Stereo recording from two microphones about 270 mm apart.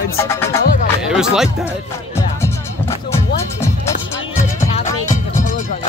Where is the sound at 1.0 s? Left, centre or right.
Centre.